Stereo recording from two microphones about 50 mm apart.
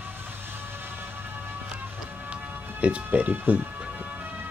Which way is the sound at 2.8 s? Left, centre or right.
Right.